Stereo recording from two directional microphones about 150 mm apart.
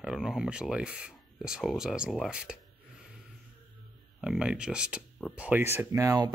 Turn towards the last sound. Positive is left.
turn(degrees=-20)  # may be behind; listen again after turning